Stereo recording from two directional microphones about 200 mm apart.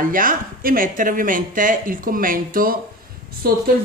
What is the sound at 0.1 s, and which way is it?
A woman's voice, 45° right (ahead or behind).